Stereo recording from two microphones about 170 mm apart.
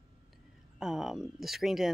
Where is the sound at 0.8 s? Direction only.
Centre (ahead or behind).